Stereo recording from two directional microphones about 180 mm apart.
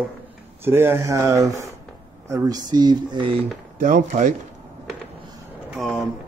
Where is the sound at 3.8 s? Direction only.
45° right (ahead or behind).